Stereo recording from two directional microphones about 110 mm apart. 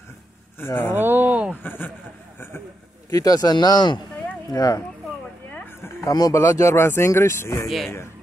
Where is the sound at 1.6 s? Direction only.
15° left (ahead or behind).